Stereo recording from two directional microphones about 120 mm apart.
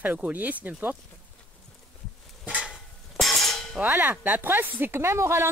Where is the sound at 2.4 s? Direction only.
10° right (ahead or behind).